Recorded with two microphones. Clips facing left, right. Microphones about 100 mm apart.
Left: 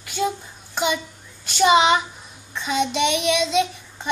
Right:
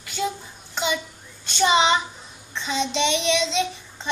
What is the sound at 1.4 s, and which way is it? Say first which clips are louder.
Speech: left 3 dB; 10° left (ahead or behind).